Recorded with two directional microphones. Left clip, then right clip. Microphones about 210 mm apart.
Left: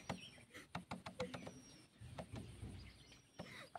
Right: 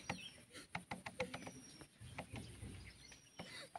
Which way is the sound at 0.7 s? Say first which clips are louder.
Right 3 dB; 55° left (ahead or behind).